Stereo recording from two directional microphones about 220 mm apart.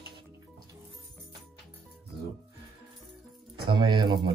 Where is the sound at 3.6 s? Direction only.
20° right (ahead or behind).